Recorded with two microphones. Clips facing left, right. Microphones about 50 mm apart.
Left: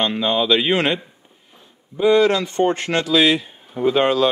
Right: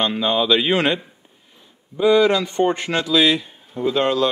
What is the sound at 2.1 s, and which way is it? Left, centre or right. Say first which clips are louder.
Speech: even; centre.